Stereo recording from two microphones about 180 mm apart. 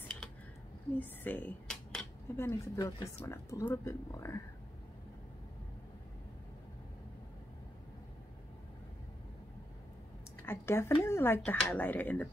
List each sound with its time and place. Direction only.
0.9 s speech: 10° left (ahead or behind)
10.4 s speech: 15° left (ahead or behind)